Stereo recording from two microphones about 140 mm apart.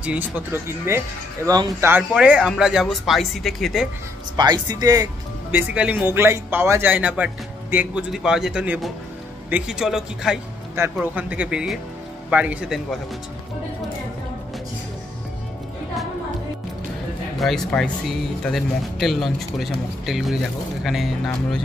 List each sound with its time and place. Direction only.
0.0 s speech: 15° right (ahead or behind)
1.9 s speech: 10° right (ahead or behind)
4.4 s speech: 30° right (ahead or behind)
5.5 s speech: 10° right (ahead or behind)
17.4 s speech: centre (ahead or behind)